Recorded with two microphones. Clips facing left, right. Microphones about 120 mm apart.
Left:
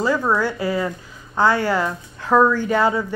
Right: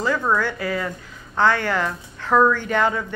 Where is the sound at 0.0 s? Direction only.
10° left (ahead or behind).